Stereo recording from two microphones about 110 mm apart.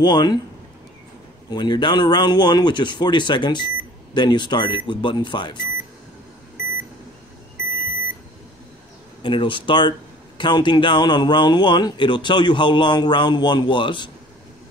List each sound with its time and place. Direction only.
0.0 s speech: 40° left (ahead or behind)
1.5 s speech: 40° left (ahead or behind)
9.2 s speech: 50° left (ahead or behind)